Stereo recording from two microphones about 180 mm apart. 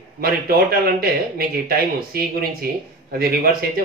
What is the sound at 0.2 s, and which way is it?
Speech, 60° right (ahead or behind).